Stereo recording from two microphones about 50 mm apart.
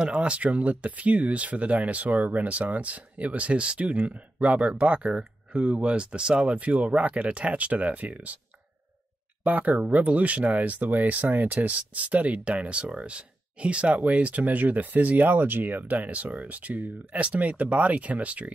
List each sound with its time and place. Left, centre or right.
0.0 s speech: right
9.4 s speech: right